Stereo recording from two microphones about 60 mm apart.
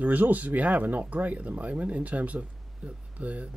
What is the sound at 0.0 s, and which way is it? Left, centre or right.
Speech, right.